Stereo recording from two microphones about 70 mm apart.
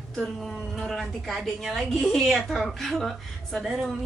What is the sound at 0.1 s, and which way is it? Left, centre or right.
A woman's voice, centre.